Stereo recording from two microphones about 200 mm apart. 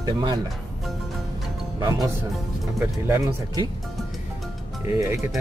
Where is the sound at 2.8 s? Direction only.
10° right (ahead or behind).